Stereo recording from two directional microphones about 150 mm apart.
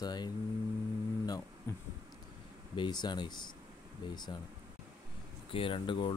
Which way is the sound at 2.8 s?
30° left (ahead or behind).